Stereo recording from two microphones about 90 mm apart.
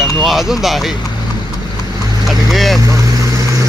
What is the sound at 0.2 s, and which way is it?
Speech, centre (ahead or behind).